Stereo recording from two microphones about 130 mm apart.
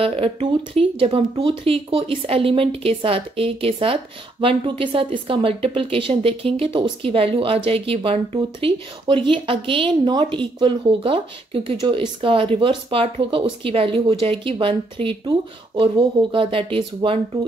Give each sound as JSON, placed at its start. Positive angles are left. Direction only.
{"t": 0.0, "sound": "speech", "side_deg": -45}